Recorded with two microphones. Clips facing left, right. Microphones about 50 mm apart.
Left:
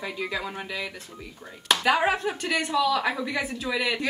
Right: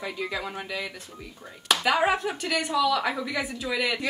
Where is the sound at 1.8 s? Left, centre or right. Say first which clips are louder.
Even; centre.